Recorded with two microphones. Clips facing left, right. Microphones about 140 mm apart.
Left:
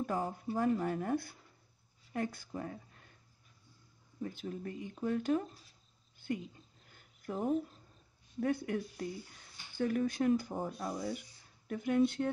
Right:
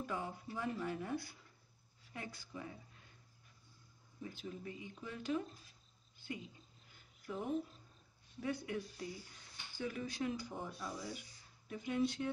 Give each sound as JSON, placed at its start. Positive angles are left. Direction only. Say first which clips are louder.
{"t": 0.0, "sound": "speech", "louder": "left 7 dB", "side_deg": 45}
{"t": 4.2, "sound": "speech", "louder": "left 6 dB", "side_deg": 50}
{"t": 6.1, "sound": "a sound", "louder": "left 9 dB", "side_deg": 50}
{"t": 7.2, "sound": "speech", "louder": "left 6 dB", "side_deg": 40}